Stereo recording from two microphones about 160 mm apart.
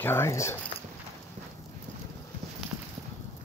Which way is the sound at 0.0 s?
15° left (ahead or behind).